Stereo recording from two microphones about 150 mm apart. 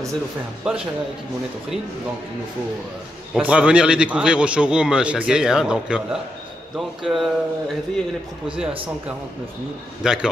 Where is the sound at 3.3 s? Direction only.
5° right (ahead or behind).